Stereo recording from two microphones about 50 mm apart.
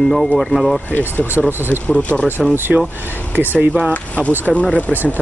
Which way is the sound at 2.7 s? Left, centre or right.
Centre.